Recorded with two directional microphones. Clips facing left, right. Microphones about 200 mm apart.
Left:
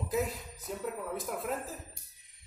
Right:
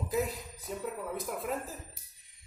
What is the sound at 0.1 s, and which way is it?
A man's voice, centre (ahead or behind).